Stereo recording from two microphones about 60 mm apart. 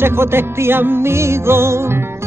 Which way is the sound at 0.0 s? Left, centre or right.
Right.